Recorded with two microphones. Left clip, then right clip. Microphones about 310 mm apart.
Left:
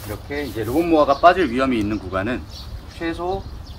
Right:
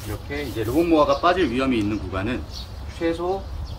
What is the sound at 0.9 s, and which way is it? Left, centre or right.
Speech, centre.